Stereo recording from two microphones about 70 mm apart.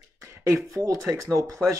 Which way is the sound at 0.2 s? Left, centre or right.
Right.